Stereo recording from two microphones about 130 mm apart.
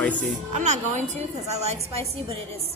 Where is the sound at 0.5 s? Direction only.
65° right (ahead or behind).